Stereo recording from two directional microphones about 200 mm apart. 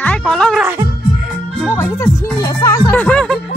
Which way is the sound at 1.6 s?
10° left (ahead or behind).